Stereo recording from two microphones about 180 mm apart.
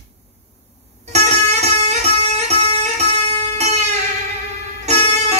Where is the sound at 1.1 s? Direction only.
40° right (ahead or behind).